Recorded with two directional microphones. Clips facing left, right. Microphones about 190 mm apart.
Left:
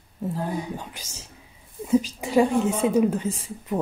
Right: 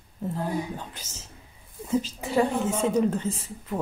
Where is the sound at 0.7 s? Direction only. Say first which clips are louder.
Left 2 dB; 10° left (ahead or behind).